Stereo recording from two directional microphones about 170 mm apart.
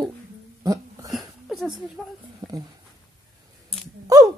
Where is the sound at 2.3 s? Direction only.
20° right (ahead or behind).